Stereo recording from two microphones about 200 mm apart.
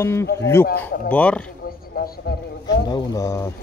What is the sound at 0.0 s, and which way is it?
Speech, 10° left (ahead or behind).